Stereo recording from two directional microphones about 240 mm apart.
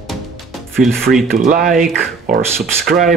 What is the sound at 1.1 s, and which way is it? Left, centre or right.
Speech, centre.